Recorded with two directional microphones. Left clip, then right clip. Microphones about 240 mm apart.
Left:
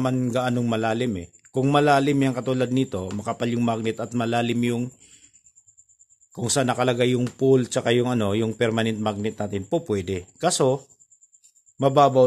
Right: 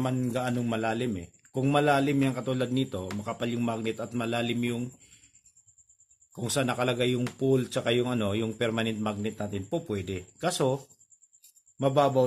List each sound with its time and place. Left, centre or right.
0.0 s a man's voice: left
6.3 s a man's voice: left
11.8 s a man's voice: left